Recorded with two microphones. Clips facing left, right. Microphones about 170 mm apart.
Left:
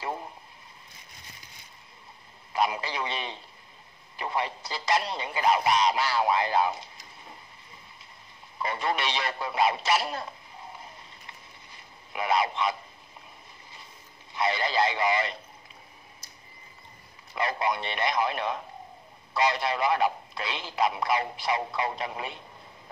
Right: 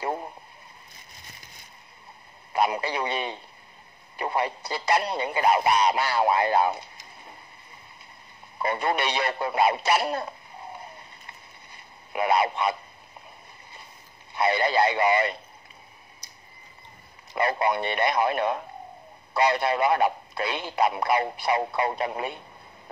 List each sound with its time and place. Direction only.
3.1 s a sound: 55° right (ahead or behind)
4.3 s speech: 60° right (ahead or behind)
8.5 s speech: 55° right (ahead or behind)
12.2 s speech: 55° right (ahead or behind)
14.5 s speech: 60° right (ahead or behind)
17.5 s speech: 55° right (ahead or behind)